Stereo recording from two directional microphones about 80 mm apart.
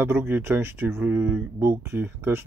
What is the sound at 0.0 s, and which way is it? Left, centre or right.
Speech, right.